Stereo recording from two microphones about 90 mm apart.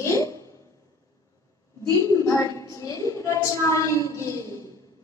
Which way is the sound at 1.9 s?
35° left (ahead or behind).